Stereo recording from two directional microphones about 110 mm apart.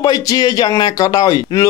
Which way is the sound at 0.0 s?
35° left (ahead or behind).